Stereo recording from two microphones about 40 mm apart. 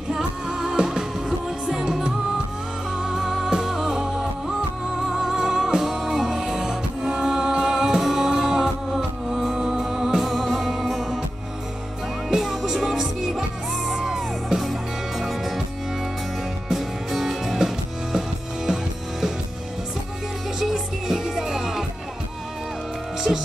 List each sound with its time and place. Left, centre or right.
0.2 s music: centre
3.0 s music: centre
12.3 s music: centre
16.6 s music: centre
21.1 s music: centre